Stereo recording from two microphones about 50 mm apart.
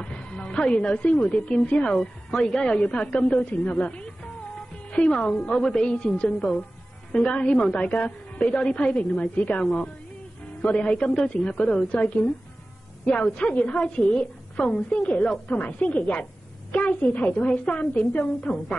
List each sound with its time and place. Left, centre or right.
0.0 s music: left
1.2 s a woman's voice: left
2.0 s a woman's voice: centre; by 8.5 s left
8.5 s a woman's voice: centre
8.8 s a woman's voice: left
11.0 s a woman's voice: centre
11.4 s a woman's voice: left
17.4 s a woman's voice: centre